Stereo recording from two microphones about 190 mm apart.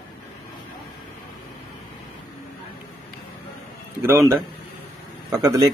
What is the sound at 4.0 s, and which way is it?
Speech, 10° right (ahead or behind).